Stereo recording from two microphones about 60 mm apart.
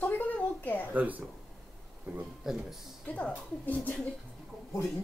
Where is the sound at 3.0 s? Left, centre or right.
Left.